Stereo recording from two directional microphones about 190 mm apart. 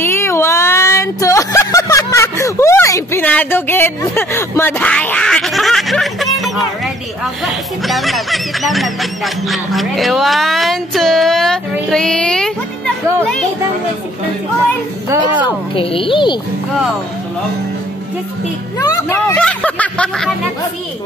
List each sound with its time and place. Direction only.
0.0 s a sound: 15° left (ahead or behind)
7.4 s speech: centre (ahead or behind)
15.7 s a woman's voice: 30° left (ahead or behind)
18.8 s speech: 15° left (ahead or behind)